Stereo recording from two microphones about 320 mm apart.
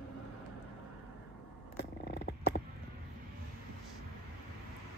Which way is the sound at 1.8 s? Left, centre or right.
Left.